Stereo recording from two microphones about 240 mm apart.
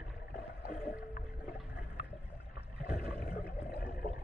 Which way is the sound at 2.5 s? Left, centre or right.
Left.